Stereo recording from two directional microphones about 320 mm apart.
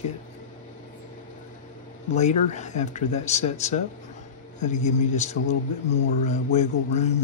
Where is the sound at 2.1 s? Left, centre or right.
Left.